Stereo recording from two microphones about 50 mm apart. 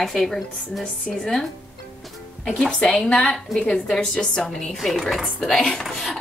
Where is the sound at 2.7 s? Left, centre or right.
Centre.